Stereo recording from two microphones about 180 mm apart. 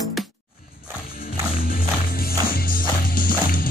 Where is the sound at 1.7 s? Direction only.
55° left (ahead or behind).